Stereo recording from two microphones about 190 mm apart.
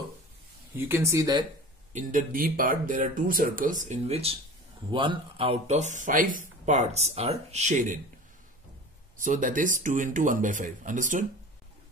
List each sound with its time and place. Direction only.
0.7 s speech: 10° right (ahead or behind)
2.0 s speech: 45° right (ahead or behind)
9.2 s speech: 45° right (ahead or behind)